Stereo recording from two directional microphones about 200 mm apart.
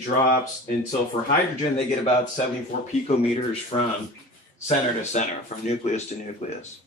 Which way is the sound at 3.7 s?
25° left (ahead or behind).